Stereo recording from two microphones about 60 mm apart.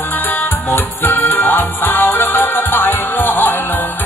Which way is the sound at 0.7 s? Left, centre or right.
Left.